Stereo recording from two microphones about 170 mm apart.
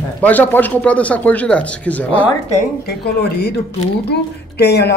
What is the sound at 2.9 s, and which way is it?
Speech, 70° left (ahead or behind).